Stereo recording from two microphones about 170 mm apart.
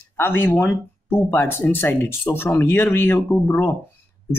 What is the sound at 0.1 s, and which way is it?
Speech, 15° left (ahead or behind).